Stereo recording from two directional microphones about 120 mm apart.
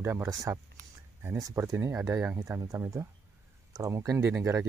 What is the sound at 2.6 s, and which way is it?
Speech, 25° right (ahead or behind).